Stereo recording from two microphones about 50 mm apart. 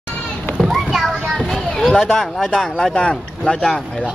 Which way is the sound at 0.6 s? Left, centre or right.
Centre.